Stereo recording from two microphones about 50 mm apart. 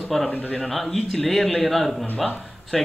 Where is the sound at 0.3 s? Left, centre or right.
Left.